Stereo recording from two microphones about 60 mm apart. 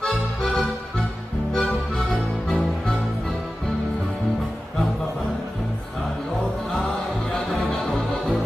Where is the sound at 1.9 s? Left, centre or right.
Centre.